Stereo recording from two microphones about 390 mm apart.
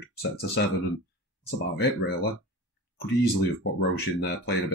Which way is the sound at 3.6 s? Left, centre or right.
Left.